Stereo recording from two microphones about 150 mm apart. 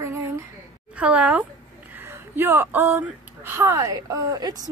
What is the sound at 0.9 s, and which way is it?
Speech, 10° right (ahead or behind).